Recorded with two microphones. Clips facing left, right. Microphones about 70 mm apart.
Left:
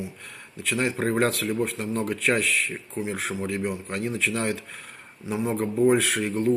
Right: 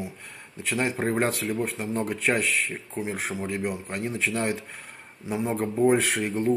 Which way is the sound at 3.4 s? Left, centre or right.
Centre.